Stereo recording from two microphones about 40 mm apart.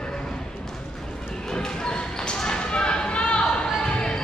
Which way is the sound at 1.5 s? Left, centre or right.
Centre.